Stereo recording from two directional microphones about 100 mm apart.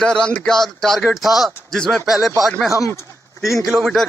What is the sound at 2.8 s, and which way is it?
Speech, 30° left (ahead or behind).